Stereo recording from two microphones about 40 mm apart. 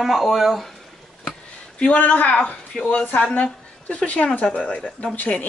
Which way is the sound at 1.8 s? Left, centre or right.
Left.